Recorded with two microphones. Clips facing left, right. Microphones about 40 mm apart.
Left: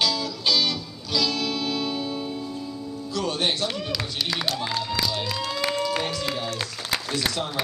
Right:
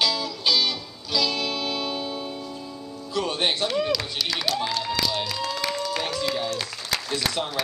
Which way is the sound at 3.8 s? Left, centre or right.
Centre.